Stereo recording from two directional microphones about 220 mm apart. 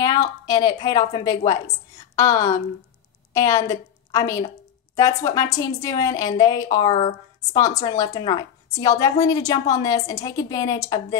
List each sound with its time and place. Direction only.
0.0 s a woman's voice: 15° left (ahead or behind)